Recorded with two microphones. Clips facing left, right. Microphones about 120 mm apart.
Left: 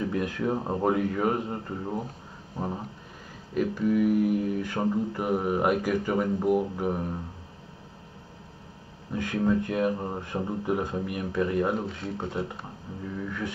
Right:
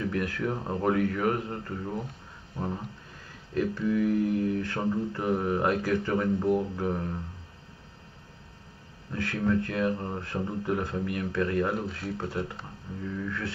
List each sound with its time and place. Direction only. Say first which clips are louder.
0.0 s speech: left 2 dB; 20° left (ahead or behind)
9.1 s speech: left 2 dB; 15° left (ahead or behind)